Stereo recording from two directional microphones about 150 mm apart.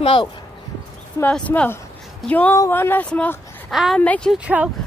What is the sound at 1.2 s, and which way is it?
Speech, 10° left (ahead or behind).